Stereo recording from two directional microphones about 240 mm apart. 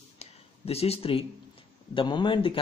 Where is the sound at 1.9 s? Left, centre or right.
Centre.